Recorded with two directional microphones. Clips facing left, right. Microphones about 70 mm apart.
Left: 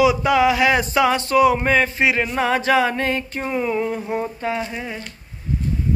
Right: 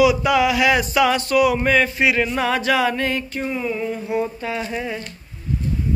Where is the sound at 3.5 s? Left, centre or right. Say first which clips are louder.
Left 4 dB; left.